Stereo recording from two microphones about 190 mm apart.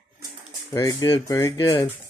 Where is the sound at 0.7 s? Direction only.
15° left (ahead or behind).